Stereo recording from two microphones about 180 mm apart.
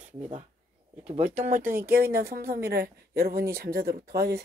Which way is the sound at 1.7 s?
55° right (ahead or behind).